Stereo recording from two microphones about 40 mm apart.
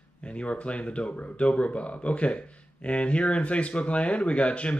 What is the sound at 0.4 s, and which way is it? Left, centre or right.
Speech, left.